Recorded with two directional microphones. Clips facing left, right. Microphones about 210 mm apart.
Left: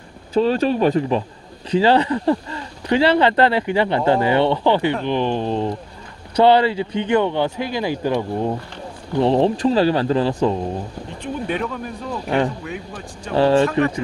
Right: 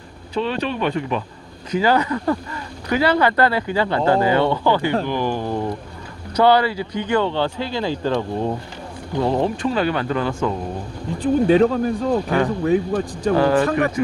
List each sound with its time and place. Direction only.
0.3 s speech: 40° left (ahead or behind); by 8.5 s 15° left (ahead or behind)
9.2 s speech: 30° left (ahead or behind)
11.4 s speech: 35° right (ahead or behind)
13.3 s speech: 25° left (ahead or behind)